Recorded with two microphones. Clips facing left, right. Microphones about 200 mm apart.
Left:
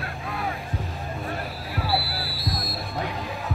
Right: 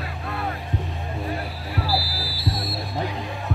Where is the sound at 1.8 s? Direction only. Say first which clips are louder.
Right 1 dB; centre (ahead or behind).